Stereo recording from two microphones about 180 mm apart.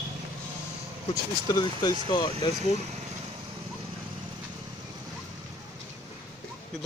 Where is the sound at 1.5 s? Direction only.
20° left (ahead or behind).